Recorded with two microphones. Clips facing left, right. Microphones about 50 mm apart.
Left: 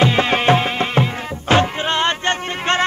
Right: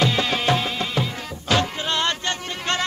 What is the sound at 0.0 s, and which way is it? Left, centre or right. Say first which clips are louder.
Music: left 6 dB; left.